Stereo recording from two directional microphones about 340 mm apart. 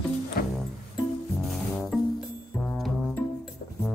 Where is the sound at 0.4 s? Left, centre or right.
Left.